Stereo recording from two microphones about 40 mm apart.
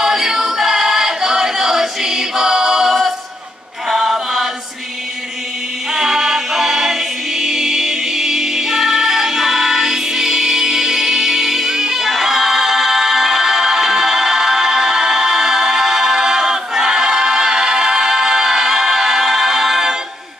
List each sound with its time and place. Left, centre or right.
0.0 s choir: centre
3.9 s chant: centre
5.9 s music: centre